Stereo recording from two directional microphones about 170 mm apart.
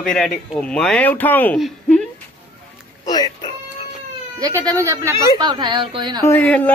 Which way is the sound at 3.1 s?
25° left (ahead or behind).